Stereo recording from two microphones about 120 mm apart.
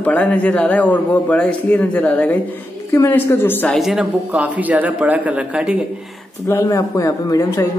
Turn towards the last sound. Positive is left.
turn(degrees=25)  # may be behind; listen again after turning